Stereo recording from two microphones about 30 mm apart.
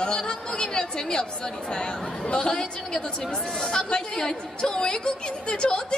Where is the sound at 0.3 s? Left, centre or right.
Left.